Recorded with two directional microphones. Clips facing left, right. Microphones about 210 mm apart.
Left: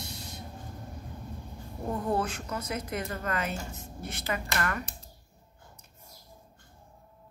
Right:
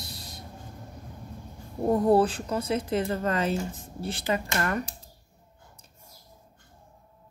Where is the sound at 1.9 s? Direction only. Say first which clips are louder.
Right 9 dB; 35° right (ahead or behind).